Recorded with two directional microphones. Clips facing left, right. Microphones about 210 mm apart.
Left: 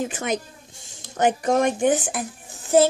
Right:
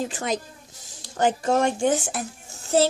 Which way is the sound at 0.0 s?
20° left (ahead or behind).